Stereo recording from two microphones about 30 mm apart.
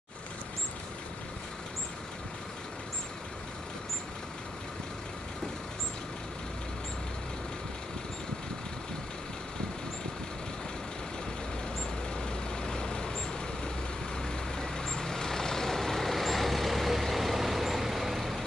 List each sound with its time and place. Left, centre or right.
12.2 s vehicle: left
14.1 s vehicle: centre